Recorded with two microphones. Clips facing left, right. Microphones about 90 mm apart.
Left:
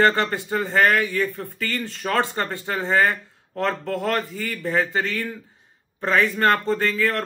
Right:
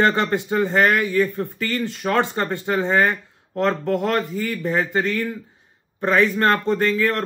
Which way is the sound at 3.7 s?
15° right (ahead or behind).